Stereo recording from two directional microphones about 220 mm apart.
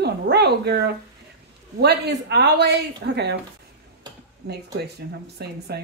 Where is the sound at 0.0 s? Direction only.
50° right (ahead or behind).